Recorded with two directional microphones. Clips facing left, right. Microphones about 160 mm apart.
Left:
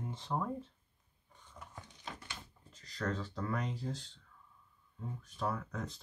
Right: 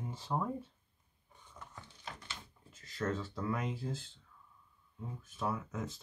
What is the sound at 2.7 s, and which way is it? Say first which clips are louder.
Speech: right 2 dB; 5° right (ahead or behind).